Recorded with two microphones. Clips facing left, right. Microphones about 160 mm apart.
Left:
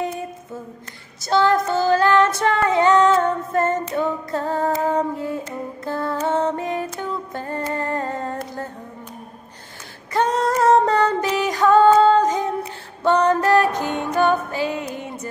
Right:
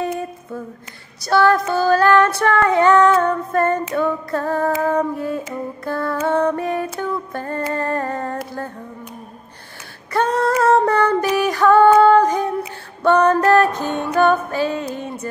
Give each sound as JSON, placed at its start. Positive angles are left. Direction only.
{"t": 1.2, "sound": "female singing", "side_deg": 20}
{"t": 5.9, "sound": "music", "side_deg": 20}
{"t": 7.7, "sound": "humming", "side_deg": 20}
{"t": 10.1, "sound": "female singing", "side_deg": 20}
{"t": 10.6, "sound": "a sound", "side_deg": 20}
{"t": 11.1, "sound": "music", "side_deg": 20}
{"t": 12.2, "sound": "humming", "side_deg": 20}
{"t": 13.0, "sound": "music", "side_deg": 15}